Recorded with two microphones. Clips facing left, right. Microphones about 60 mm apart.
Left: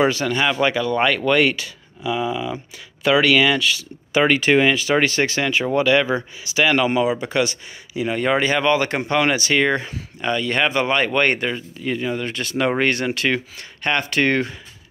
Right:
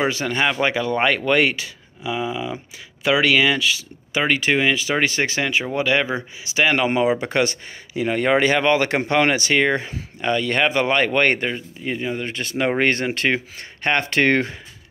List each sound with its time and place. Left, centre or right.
0.1 s speech: right
4.1 s speech: centre; by 7.1 s right
7.1 s speech: right
10.3 s speech: right
11.8 s speech: right
12.8 s speech: right
13.9 s speech: right